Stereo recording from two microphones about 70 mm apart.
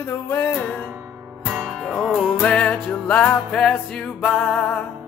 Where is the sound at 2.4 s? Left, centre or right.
Centre.